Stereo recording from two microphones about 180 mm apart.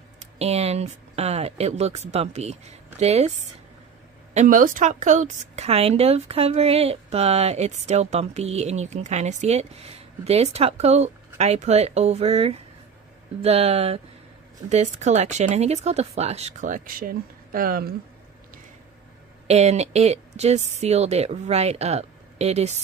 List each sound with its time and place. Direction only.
0.2 s a woman's voice: 35° right (ahead or behind); by 17.9 s 55° right (ahead or behind)
19.4 s a woman's voice: 35° right (ahead or behind)